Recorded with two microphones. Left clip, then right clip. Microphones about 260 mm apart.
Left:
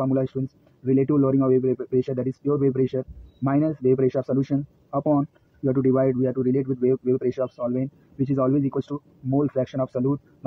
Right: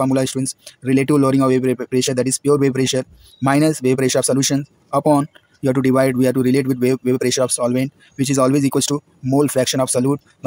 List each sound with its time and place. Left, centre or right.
0.0 s speech: right